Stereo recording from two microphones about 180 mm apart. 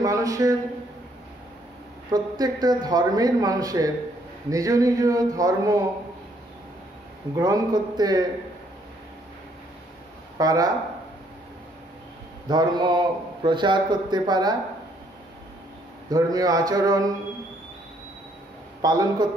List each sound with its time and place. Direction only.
0.0 s a man's voice: 20° right (ahead or behind)
2.0 s a man's voice: 20° right (ahead or behind)
7.3 s a man's voice: 20° right (ahead or behind)
10.3 s speech: 20° right (ahead or behind)
12.4 s a man's voice: 25° right (ahead or behind)
16.1 s a man's voice: 20° right (ahead or behind)
18.8 s speech: 20° right (ahead or behind)